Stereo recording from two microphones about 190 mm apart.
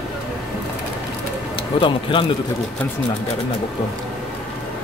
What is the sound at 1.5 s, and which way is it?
Speech, 25° left (ahead or behind).